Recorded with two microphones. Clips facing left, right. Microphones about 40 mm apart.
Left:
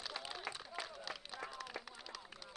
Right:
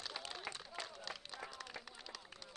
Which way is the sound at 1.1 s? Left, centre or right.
Centre.